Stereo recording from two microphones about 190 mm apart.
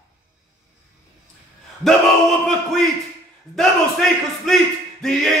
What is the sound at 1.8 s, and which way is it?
Male singing, centre (ahead or behind).